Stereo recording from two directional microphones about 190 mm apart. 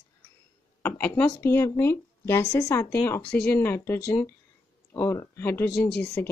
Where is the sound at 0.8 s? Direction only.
10° left (ahead or behind).